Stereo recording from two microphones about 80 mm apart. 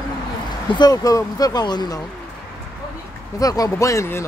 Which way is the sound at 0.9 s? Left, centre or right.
Left.